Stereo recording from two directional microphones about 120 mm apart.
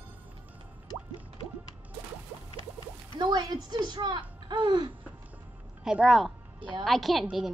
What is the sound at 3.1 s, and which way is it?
Speech, 35° right (ahead or behind).